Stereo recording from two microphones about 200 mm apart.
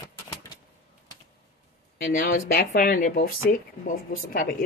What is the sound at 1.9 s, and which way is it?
Speech, 45° left (ahead or behind).